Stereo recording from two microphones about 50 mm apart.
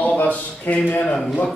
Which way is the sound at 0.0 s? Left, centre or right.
Left.